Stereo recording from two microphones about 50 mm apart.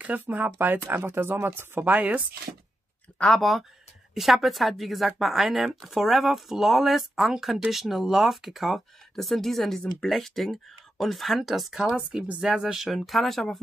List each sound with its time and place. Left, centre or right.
0.0 s speech: right
2.0 s speech: right
3.3 s a woman's voice: centre
11.9 s a woman's voice: right; by 13.6 s centre